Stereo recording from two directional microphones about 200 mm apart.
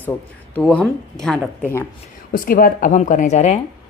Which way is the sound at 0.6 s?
5° left (ahead or behind).